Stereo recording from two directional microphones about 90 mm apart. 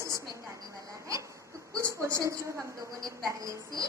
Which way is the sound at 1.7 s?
35° right (ahead or behind).